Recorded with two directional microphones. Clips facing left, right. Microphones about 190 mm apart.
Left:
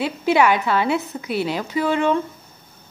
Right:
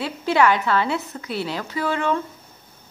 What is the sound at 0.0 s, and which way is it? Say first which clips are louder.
Speech: left 2 dB; 15° left (ahead or behind).